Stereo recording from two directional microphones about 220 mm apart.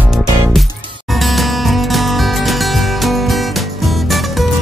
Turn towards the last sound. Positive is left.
turn(degrees=0)  # may be behind; listen again after turning